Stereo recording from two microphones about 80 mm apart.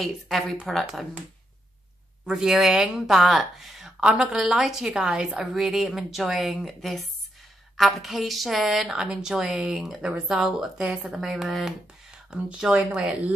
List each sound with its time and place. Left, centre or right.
0.0 s speech: centre
2.2 s speech: centre